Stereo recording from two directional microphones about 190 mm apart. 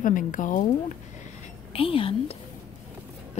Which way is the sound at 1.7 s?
30° left (ahead or behind).